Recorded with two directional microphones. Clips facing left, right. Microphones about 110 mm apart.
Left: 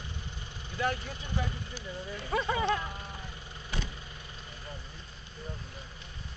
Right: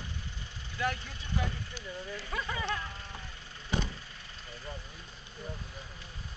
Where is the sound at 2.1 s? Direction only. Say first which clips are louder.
Left 8 dB; 30° left (ahead or behind).